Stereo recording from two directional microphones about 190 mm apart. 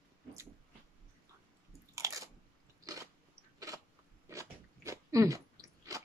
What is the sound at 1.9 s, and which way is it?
Biting, 15° right (ahead or behind).